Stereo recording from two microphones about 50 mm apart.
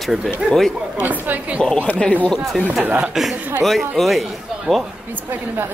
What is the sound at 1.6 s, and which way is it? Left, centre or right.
Speech, left.